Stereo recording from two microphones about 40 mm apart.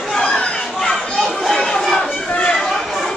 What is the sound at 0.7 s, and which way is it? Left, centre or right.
Children playing, centre.